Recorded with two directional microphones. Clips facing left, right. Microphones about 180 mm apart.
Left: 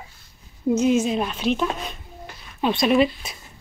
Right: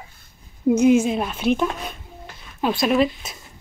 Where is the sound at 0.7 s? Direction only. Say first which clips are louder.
Right 3 dB; 10° right (ahead or behind).